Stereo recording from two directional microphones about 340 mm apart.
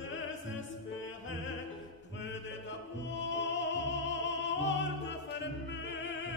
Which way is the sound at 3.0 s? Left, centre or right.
Left.